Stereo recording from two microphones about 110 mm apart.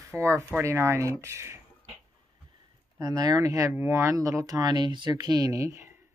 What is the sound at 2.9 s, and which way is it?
Speech, 35° right (ahead or behind).